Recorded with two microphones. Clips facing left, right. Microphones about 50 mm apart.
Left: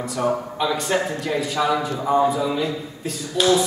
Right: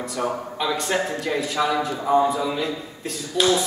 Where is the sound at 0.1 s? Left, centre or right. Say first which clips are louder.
Left 5 dB; centre.